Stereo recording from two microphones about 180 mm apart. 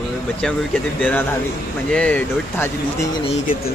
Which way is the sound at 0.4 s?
5° left (ahead or behind).